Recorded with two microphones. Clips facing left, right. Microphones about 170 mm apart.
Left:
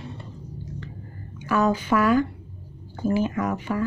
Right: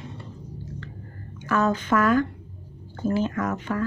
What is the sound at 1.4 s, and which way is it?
Speech, 10° left (ahead or behind).